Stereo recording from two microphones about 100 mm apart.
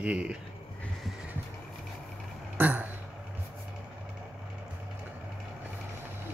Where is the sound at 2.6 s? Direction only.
15° right (ahead or behind).